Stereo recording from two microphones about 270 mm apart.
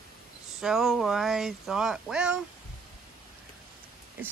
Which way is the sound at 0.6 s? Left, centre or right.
Centre.